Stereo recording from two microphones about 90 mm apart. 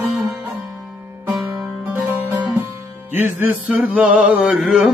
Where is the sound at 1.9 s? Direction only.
25° right (ahead or behind).